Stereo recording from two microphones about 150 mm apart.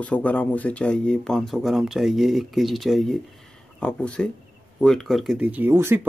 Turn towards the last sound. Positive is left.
turn(degrees=-15)  # may be behind; listen again after turning